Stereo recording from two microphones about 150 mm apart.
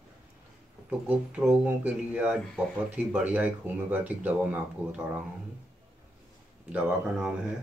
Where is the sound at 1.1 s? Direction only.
5° right (ahead or behind).